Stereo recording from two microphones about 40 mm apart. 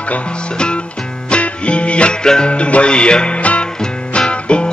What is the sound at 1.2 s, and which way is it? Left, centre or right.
Music, left.